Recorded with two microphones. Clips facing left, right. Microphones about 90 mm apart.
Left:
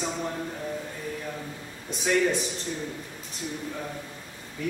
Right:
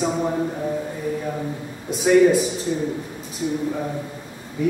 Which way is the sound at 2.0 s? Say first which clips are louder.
Right 10 dB; 5° right (ahead or behind).